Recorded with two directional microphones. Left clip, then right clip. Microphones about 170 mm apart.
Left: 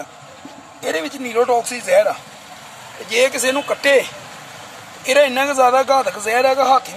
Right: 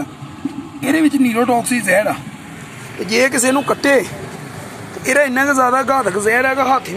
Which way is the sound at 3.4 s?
25° right (ahead or behind).